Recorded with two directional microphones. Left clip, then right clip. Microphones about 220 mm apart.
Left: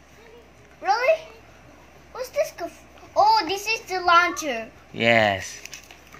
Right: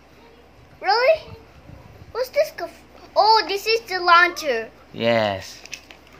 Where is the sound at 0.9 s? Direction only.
10° right (ahead or behind).